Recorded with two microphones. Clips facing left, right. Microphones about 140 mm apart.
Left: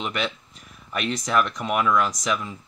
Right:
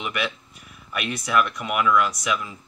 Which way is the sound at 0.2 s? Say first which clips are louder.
Even; 10° right (ahead or behind).